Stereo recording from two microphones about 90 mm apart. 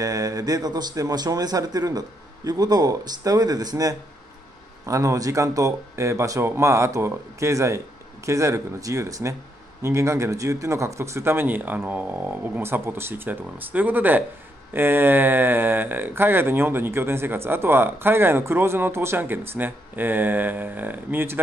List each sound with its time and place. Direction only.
0.0 s a man's voice: 40° right (ahead or behind)